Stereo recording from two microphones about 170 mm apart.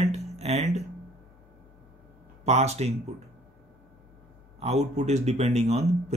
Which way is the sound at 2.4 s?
40° right (ahead or behind).